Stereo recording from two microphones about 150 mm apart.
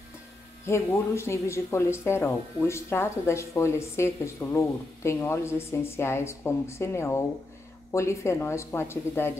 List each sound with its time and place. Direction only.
0.7 s speech: 20° left (ahead or behind)